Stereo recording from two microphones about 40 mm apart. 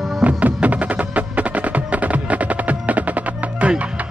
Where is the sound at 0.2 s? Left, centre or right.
Right.